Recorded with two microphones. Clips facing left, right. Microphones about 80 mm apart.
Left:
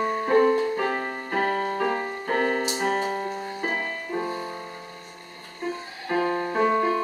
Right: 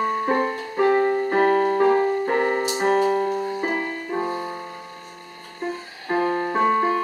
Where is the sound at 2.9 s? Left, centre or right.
Right.